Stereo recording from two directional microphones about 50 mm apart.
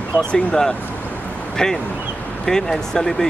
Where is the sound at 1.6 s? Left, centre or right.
Centre.